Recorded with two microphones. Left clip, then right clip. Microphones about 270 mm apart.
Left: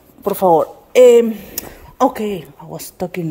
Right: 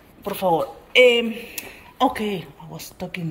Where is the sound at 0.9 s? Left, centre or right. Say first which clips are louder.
Left 7 dB; left.